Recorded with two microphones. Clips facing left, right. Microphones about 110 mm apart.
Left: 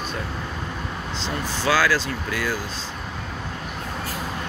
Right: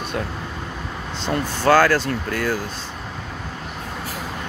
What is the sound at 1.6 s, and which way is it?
Speech, 50° right (ahead or behind).